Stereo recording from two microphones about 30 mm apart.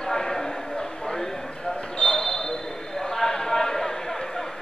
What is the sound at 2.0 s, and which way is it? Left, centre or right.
Basketball bounce, left.